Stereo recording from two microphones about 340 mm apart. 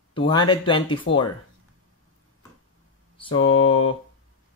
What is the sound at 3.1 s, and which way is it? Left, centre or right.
Mantra, centre.